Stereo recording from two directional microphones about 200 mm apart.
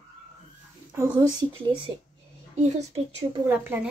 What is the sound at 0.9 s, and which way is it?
Speech, 15° right (ahead or behind).